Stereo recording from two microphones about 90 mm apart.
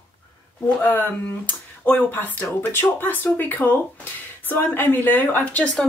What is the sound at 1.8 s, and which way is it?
Speech, 20° left (ahead or behind).